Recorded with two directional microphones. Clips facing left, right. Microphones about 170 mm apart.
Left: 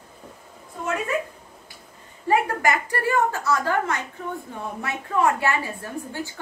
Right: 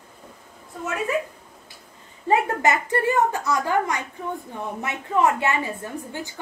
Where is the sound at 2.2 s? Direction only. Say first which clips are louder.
Right 1 dB; 25° right (ahead or behind).